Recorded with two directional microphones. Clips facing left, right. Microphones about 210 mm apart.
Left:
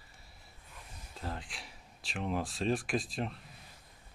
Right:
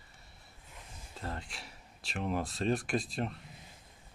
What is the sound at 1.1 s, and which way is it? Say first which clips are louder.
Speech: even; centre (ahead or behind).